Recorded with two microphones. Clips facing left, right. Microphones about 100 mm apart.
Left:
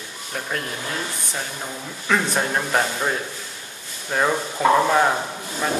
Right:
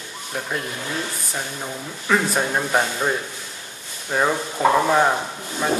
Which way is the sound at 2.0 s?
5° right (ahead or behind).